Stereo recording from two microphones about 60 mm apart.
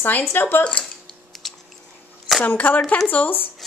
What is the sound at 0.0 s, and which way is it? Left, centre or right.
Speech, left.